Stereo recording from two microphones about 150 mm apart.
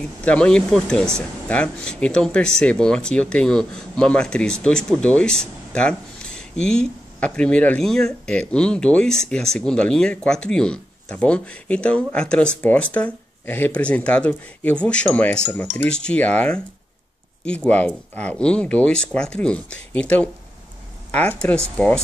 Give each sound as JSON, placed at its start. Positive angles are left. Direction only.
{"t": 0.2, "sound": "speech", "side_deg": 10}
{"t": 5.0, "sound": "a sound", "side_deg": 5}
{"t": 7.3, "sound": "speech", "side_deg": 10}